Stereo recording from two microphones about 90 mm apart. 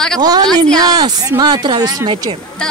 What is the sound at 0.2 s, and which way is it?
Speech, 45° right (ahead or behind).